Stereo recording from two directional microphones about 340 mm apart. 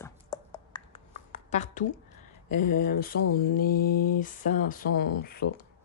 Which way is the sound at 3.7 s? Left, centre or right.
Left.